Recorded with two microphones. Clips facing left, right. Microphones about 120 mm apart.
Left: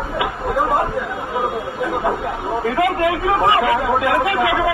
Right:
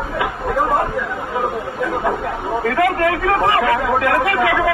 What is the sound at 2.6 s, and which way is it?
A man's voice, 20° left (ahead or behind).